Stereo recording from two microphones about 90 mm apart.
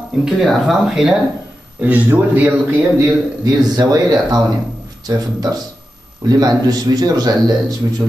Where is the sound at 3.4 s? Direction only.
45° right (ahead or behind).